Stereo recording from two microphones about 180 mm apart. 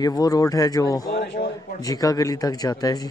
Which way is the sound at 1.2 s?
70° left (ahead or behind).